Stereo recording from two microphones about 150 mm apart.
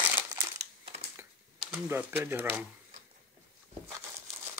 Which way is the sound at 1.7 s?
15° right (ahead or behind).